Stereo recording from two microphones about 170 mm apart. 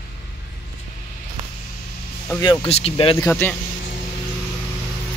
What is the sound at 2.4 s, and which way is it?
Speech, 30° left (ahead or behind).